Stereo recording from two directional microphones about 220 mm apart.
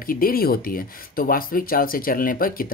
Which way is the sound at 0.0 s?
40° left (ahead or behind).